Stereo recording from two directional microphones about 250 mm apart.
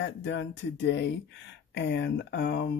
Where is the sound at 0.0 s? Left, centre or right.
Left.